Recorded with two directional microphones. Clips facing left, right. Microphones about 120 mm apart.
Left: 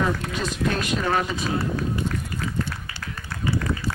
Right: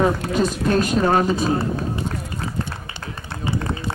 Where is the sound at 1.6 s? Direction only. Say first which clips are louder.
Right 2 dB; 25° right (ahead or behind).